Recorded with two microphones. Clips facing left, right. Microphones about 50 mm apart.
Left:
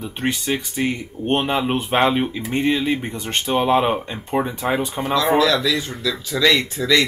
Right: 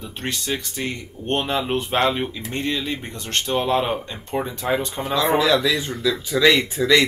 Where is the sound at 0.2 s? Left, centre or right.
Centre.